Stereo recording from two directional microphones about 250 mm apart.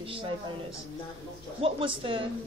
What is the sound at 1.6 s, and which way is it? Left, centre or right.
Speech, right.